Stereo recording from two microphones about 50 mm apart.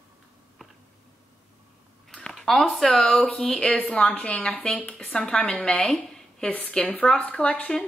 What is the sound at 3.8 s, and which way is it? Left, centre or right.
Speech, left.